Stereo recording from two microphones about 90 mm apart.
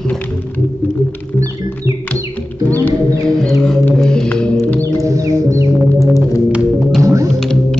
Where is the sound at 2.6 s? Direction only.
20° left (ahead or behind).